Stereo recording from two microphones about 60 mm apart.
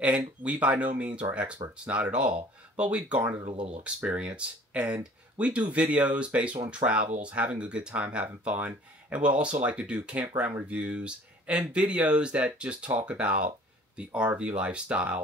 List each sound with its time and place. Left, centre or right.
0.4 s speech: right